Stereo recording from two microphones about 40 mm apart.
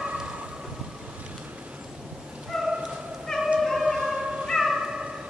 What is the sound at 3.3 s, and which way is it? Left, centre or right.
Cat, centre.